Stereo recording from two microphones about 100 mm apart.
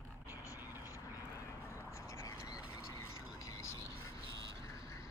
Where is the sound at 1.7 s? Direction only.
30° left (ahead or behind).